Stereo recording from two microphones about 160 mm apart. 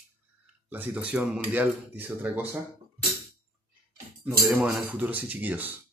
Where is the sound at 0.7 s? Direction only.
10° right (ahead or behind).